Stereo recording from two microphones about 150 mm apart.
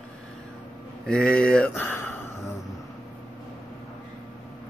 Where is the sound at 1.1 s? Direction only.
5° left (ahead or behind).